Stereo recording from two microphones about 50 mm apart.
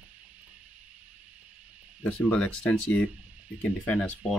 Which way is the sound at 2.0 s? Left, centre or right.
Left.